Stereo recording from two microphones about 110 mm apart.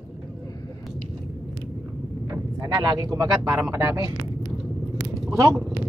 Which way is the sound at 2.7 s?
40° right (ahead or behind).